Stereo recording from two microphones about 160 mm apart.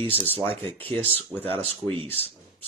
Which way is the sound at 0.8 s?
35° right (ahead or behind).